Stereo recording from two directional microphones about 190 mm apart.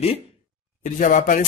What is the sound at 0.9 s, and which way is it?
Speech, 45° left (ahead or behind).